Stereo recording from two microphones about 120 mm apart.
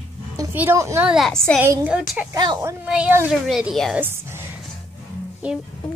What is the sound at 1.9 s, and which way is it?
A woman's voice, 10° right (ahead or behind).